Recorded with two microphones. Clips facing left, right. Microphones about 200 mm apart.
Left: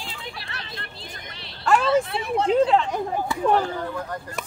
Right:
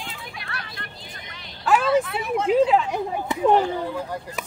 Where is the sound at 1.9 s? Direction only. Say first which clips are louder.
Even; 30° left (ahead or behind).